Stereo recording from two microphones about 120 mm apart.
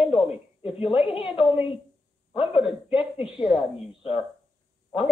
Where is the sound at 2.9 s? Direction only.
50° left (ahead or behind).